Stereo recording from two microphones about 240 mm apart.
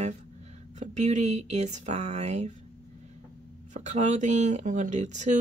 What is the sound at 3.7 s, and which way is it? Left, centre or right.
Speech, right.